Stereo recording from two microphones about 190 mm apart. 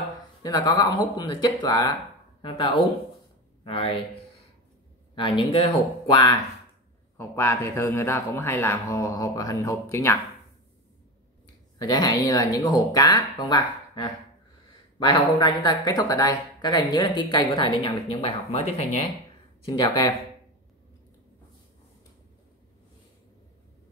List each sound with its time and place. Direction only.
0.4 s speech: 20° left (ahead or behind)
5.1 s speech: 25° left (ahead or behind)
7.2 s a man's voice: 15° left (ahead or behind)
11.8 s speech: 20° left (ahead or behind)
19.7 s speech: 20° left (ahead or behind)